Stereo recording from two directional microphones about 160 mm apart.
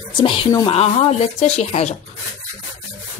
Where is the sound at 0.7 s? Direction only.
40° left (ahead or behind).